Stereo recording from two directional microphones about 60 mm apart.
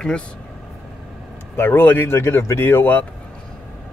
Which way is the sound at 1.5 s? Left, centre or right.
Left.